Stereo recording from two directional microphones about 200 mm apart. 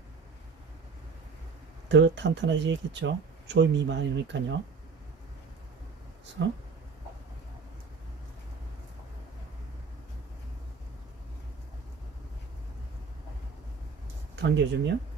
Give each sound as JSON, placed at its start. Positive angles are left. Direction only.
{"t": 1.9, "sound": "speech", "side_deg": -60}
{"t": 6.4, "sound": "speech", "side_deg": -60}
{"t": 14.3, "sound": "speech", "side_deg": -65}